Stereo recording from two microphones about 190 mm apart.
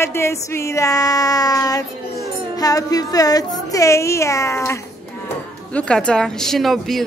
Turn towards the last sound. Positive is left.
turn(degrees=0)  # may be behind; listen again after turning